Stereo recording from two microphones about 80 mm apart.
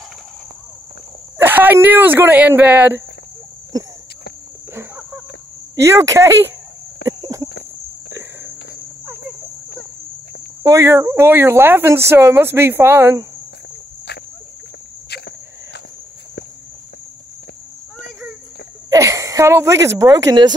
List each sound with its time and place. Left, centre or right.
1.4 s speech: right
5.9 s speech: right
8.1 s cricket: right
10.6 s speech: right
18.9 s speech: right